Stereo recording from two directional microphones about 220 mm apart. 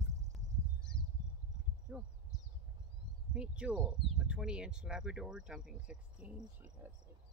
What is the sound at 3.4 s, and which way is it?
Speech, 5° right (ahead or behind).